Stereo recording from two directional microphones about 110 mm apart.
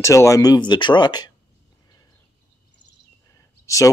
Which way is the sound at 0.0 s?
30° left (ahead or behind).